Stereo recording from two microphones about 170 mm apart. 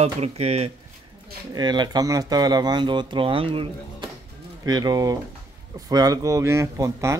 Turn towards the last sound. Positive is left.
turn(degrees=-15)  # may be behind; listen again after turning